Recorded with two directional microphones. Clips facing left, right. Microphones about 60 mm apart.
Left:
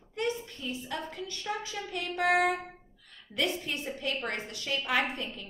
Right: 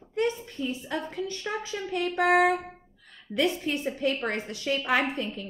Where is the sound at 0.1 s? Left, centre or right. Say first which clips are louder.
Right 5 dB; right.